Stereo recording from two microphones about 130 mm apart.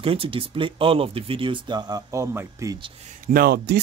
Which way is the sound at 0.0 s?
45° right (ahead or behind).